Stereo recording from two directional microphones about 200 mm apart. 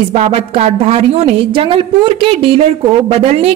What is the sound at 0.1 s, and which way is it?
A woman's voice, 30° right (ahead or behind).